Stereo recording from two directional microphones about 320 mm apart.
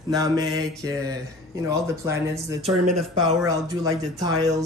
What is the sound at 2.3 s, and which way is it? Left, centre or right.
Speech, centre.